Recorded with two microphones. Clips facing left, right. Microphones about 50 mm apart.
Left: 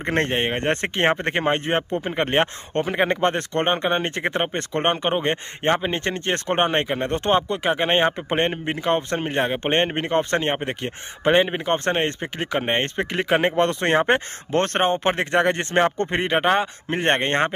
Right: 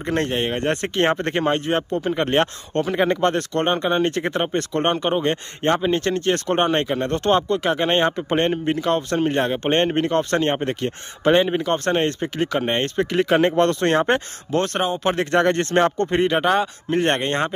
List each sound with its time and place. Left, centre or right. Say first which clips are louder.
0.0 s speech: even; left
14.5 s speech: left 1 dB; left
15.0 s speech: right 1 dB; left